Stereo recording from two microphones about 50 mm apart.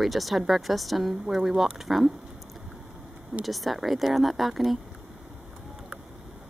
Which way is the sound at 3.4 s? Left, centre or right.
Centre.